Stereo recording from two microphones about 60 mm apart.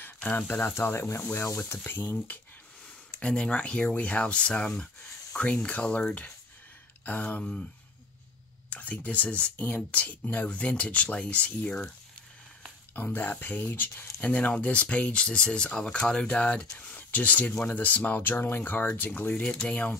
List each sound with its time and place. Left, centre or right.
0.5 s speech: left
3.1 s speech: centre
7.1 s speech: left
8.6 s speech: left
12.9 s speech: left